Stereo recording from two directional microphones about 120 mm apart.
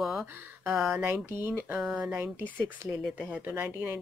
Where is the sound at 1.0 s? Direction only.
20° right (ahead or behind).